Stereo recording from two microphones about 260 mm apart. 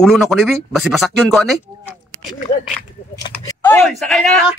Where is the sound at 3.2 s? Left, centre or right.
Centre.